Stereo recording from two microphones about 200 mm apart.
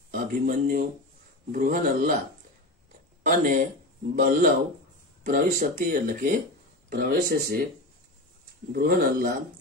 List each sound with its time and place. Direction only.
0.1 s speech: 45° right (ahead or behind)
3.3 s speech: 40° right (ahead or behind)
8.7 s speech: 50° right (ahead or behind)